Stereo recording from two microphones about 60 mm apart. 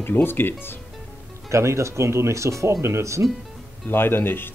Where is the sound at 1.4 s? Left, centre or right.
Right.